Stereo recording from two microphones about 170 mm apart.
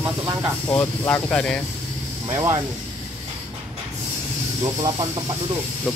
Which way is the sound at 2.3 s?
20° right (ahead or behind).